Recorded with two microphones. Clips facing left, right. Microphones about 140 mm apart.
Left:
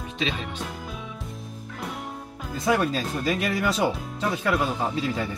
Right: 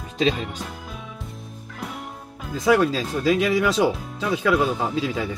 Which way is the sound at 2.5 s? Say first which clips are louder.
Right 5 dB; 90° right.